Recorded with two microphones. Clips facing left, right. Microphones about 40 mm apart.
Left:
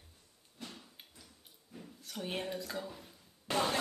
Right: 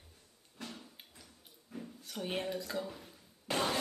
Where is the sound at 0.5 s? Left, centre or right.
Right.